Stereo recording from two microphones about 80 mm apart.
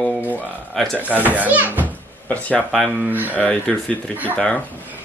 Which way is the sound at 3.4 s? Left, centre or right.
Centre.